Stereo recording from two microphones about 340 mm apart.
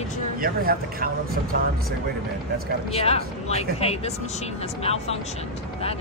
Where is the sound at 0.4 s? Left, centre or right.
Right.